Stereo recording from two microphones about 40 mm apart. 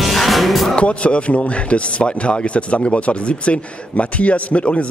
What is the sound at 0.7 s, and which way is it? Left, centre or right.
Speech, left.